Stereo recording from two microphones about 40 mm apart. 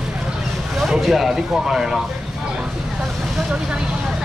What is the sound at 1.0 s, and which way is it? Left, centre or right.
Speech, centre.